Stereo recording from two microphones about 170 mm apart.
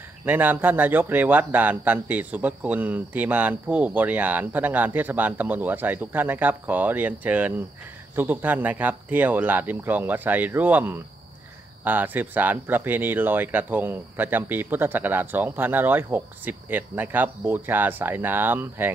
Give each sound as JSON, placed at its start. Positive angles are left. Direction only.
{"t": 0.2, "sound": "speech", "side_deg": -10}